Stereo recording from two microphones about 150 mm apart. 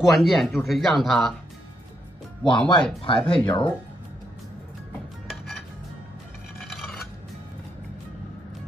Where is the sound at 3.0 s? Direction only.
35° left (ahead or behind).